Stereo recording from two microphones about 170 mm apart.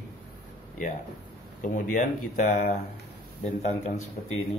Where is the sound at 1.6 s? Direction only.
50° left (ahead or behind).